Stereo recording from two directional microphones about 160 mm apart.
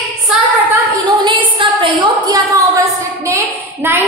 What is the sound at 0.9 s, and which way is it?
A woman's voice, 30° right (ahead or behind).